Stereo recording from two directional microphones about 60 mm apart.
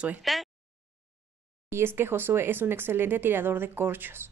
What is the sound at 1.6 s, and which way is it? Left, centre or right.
Speech, right.